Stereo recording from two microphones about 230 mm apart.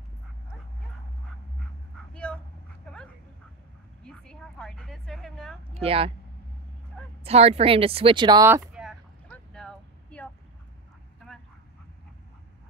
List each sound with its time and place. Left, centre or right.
2.1 s dog: centre
4.0 s a sound: centre
5.8 s speech: right
7.2 s speech: right; by 8.9 s centre
9.3 s vehicle: centre